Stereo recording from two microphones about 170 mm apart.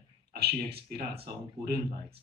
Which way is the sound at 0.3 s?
70° right (ahead or behind).